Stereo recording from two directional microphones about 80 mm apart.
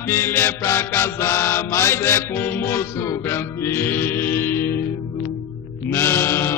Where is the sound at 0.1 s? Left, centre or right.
Left.